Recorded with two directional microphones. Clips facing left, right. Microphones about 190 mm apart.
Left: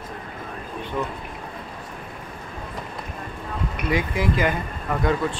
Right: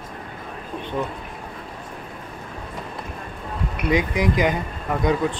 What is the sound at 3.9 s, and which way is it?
Speech, 15° right (ahead or behind).